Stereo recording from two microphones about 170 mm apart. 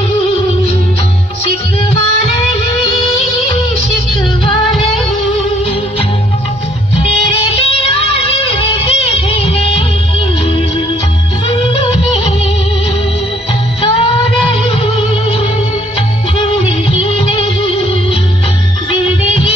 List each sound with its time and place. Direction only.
7.6 s music: 35° left (ahead or behind)
13.7 s music: 30° left (ahead or behind)
16.3 s music of bollywood: 35° left (ahead or behind)